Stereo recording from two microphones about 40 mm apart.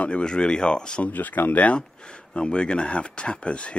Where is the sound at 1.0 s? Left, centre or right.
Left.